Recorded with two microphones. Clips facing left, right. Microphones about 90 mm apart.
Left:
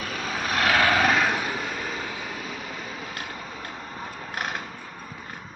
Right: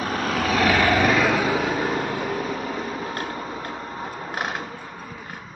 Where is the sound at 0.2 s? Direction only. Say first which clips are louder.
Right 4 dB; 80° right; by 5.4 s 15° right (ahead or behind).